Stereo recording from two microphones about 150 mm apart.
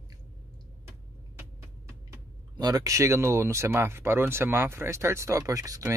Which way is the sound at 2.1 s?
25° right (ahead or behind).